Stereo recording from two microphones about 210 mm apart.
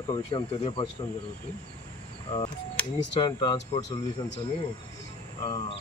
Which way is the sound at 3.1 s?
20° left (ahead or behind).